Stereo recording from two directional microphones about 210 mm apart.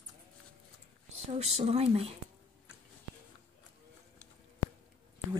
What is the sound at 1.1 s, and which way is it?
Speech, 30° right (ahead or behind).